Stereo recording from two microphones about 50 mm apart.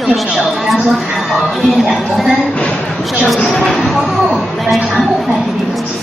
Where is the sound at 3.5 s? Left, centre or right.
Centre.